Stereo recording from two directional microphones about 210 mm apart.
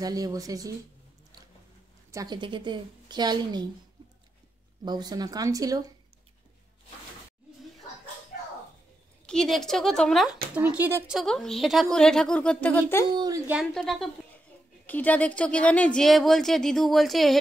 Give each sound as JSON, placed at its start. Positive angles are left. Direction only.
{"t": 0.0, "sound": "speech", "side_deg": -15}
{"t": 2.0, "sound": "a woman's voice", "side_deg": -15}
{"t": 4.8, "sound": "speech", "side_deg": -20}
{"t": 9.2, "sound": "speech", "side_deg": 5}
{"t": 11.1, "sound": "speech", "side_deg": 0}
{"t": 13.1, "sound": "a woman's voice", "side_deg": -20}
{"t": 13.5, "sound": "speech", "side_deg": 0}